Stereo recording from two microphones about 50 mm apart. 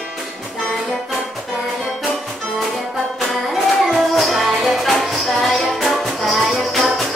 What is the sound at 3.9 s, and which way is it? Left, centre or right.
Music, centre.